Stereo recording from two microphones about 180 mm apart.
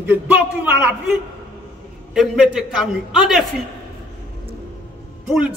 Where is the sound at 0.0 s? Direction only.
10° right (ahead or behind).